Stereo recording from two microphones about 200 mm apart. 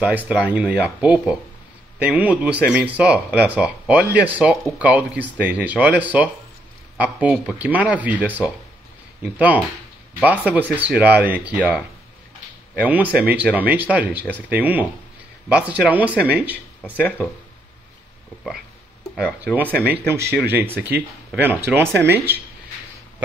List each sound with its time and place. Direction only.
0.0 s speech: 5° right (ahead or behind)
16.9 s speech: 5° left (ahead or behind)
20.5 s speech: 10° right (ahead or behind)